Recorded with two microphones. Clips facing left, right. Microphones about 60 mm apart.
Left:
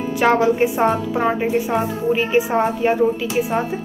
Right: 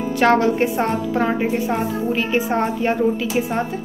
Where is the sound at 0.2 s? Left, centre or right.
Centre.